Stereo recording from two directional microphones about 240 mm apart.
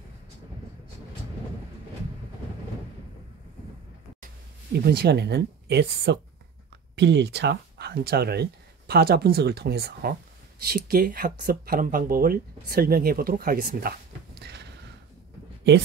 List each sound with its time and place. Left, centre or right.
4.7 s speech: right